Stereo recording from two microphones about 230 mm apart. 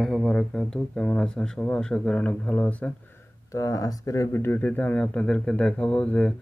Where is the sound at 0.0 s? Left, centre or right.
Centre.